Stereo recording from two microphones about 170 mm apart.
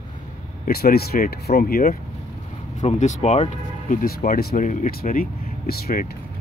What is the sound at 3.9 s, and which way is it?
Speech, 60° left (ahead or behind).